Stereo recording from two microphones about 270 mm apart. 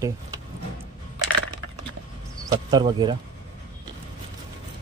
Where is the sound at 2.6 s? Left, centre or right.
Centre.